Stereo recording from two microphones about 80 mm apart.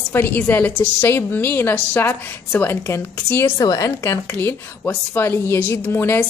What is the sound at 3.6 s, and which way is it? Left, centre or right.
Speech, left.